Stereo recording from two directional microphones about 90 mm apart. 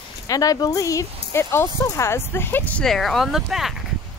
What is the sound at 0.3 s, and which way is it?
Speech, 40° left (ahead or behind).